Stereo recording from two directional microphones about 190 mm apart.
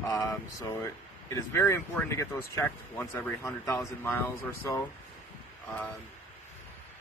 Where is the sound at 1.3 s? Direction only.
15° left (ahead or behind).